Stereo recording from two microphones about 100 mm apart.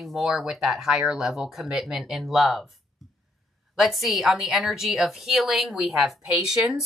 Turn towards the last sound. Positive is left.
turn(degrees=-5)  # may be behind; listen again after turning